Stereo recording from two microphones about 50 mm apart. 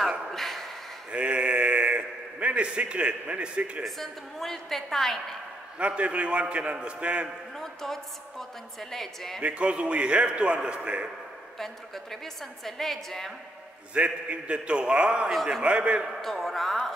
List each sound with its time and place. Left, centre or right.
0.3 s a sound: centre
1.1 s a sound: right
3.8 s a woman's voice: centre
5.8 s a man's voice: right
7.5 s a woman's voice: centre
9.4 s a man's voice: right
11.5 s a woman's voice: centre
13.9 s a man's voice: right
16.2 s a man's voice: centre